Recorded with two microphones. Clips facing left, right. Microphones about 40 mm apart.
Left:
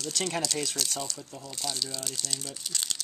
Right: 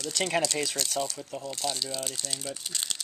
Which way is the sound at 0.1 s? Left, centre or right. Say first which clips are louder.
Right 4 dB; right.